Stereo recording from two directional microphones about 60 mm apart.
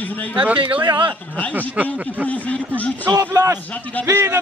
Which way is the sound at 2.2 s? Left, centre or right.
Left.